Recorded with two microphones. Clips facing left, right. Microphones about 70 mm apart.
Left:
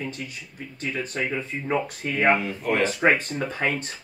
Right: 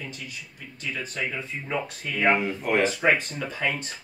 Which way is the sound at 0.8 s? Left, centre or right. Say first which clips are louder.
Left 3 dB; left.